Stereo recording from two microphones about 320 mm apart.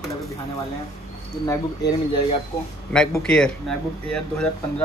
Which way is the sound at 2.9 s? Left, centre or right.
Centre.